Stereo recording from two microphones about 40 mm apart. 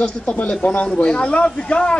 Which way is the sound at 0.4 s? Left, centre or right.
Left.